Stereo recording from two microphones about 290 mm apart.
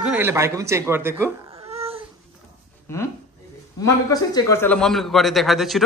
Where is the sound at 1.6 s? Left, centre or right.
Right.